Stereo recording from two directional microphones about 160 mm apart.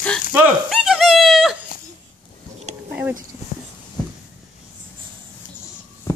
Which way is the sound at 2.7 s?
45° right (ahead or behind).